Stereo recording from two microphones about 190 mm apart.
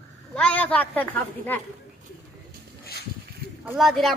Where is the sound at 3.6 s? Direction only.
Centre (ahead or behind).